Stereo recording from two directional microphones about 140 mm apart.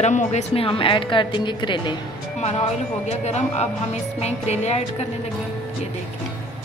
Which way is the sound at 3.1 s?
50° left (ahead or behind).